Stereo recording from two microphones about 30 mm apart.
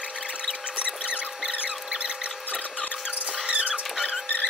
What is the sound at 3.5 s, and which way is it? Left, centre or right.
Rodents, right.